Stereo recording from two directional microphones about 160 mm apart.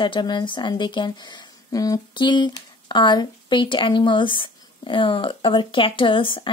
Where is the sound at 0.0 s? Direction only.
30° left (ahead or behind).